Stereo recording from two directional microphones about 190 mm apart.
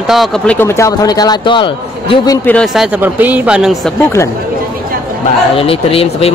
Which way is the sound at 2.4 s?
5° left (ahead or behind).